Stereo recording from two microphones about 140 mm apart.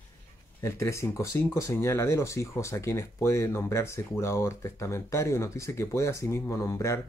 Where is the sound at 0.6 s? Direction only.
20° left (ahead or behind).